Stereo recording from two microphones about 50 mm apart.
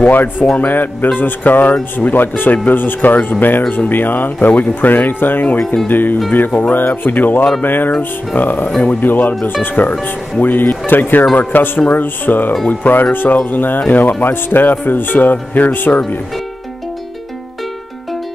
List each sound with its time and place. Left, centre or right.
0.0 s speech: left